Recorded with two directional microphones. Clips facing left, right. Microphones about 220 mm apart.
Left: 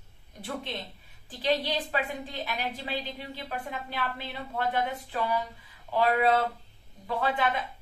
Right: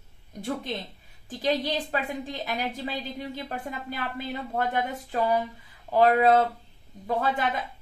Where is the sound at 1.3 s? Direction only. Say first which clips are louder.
Right 2 dB; 45° right (ahead or behind).